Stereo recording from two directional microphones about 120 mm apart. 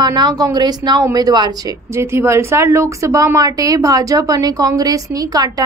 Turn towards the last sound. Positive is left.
turn(degrees=-30)  # may be behind; listen again after turning